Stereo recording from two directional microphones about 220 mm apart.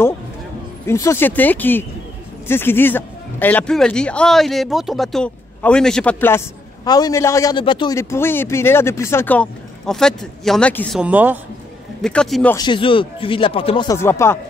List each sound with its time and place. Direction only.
0.8 s speech: 10° left (ahead or behind)
11.0 s a woman's voice: 5° right (ahead or behind)
12.5 s speech: 20° left (ahead or behind)